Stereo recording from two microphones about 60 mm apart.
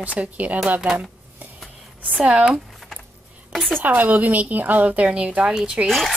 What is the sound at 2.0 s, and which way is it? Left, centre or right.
Speech, right.